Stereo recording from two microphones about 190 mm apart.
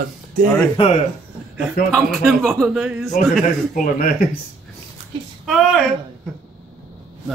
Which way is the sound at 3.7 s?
45° left (ahead or behind).